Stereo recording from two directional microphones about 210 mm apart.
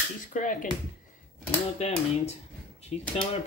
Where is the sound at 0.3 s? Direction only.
40° left (ahead or behind).